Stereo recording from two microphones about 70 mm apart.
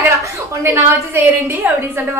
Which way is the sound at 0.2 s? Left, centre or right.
Right.